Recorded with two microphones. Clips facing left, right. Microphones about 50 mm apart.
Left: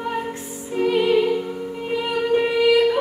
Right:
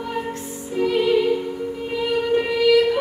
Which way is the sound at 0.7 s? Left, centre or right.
Centre.